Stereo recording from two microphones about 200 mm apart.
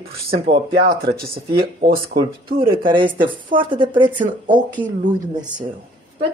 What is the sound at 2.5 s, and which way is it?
Speech, 25° right (ahead or behind).